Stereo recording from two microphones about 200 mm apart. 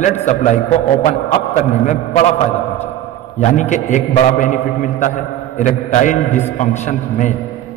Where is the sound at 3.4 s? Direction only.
35° left (ahead or behind).